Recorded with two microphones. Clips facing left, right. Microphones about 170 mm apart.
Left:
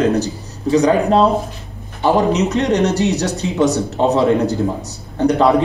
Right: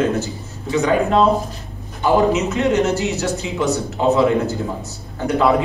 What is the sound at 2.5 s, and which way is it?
Speech, 40° left (ahead or behind).